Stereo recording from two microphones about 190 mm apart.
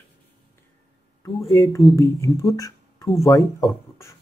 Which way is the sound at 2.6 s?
15° left (ahead or behind).